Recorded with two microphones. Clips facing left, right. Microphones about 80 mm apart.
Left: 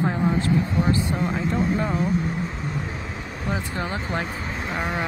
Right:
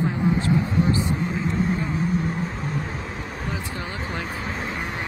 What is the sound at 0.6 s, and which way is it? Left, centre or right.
Speech, left.